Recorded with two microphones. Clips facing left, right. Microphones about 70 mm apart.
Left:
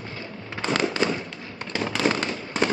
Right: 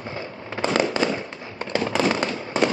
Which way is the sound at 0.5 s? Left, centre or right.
Centre.